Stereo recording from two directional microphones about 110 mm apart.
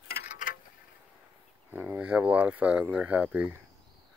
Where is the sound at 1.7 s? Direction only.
20° right (ahead or behind).